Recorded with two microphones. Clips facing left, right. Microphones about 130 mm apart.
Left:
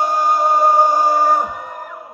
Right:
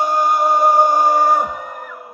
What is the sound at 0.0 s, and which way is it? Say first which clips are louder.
Music: even; centre (ahead or behind).